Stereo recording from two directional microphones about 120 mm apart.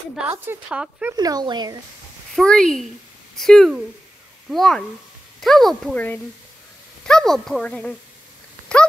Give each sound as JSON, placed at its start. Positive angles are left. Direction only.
{"t": 0.7, "sound": "speech", "side_deg": -10}
{"t": 1.1, "sound": "speech", "side_deg": -35}
{"t": 2.3, "sound": "a woman's voice", "side_deg": 5}
{"t": 5.9, "sound": "a woman's voice", "side_deg": 10}